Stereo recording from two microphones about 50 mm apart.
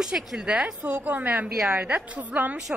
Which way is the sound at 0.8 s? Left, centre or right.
Right.